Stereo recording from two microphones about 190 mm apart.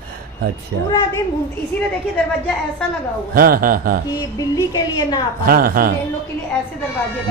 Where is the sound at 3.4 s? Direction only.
50° right (ahead or behind).